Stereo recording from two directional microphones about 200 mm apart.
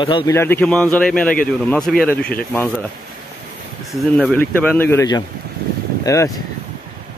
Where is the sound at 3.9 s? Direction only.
Centre (ahead or behind); by 6.4 s 15° left (ahead or behind).